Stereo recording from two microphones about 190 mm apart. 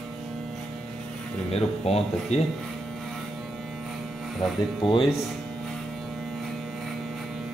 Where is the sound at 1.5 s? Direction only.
35° left (ahead or behind).